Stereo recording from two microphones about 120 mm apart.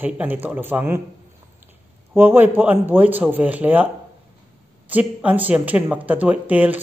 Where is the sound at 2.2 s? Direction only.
15° right (ahead or behind).